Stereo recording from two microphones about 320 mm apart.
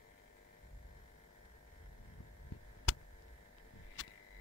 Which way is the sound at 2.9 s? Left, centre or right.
Left.